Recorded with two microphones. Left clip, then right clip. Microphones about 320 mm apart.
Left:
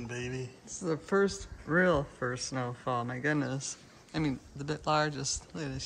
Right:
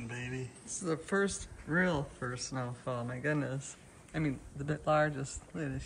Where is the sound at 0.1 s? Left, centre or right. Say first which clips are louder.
Left 4 dB; centre.